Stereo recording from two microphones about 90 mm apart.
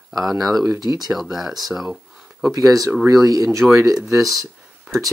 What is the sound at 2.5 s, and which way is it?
Speech, 40° right (ahead or behind).